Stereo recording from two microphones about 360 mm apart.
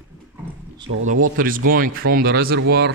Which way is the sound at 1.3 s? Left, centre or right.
Right.